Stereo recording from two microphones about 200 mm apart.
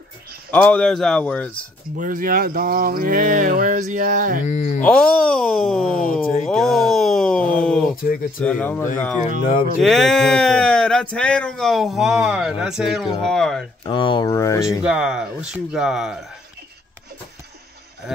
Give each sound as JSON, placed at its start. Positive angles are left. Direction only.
{"t": 0.5, "sound": "speech", "side_deg": 5}
{"t": 2.0, "sound": "a sound", "side_deg": -45}
{"t": 4.8, "sound": "speech", "side_deg": 5}
{"t": 6.4, "sound": "a sound", "side_deg": 0}
{"t": 8.0, "sound": "speech", "side_deg": 45}
{"t": 8.5, "sound": "speech", "side_deg": 10}
{"t": 13.8, "sound": "speech", "side_deg": 25}
{"t": 14.7, "sound": "speech", "side_deg": -5}